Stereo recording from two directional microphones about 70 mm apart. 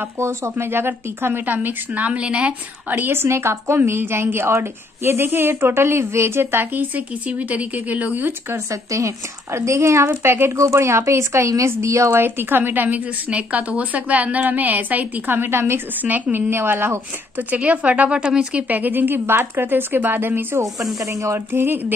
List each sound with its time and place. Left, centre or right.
0.2 s speech: right; by 2.5 s centre
2.9 s a woman's voice: right
8.9 s a woman's voice: right
12.2 s speech: right
21.0 s speech: right
21.5 s a woman's voice: right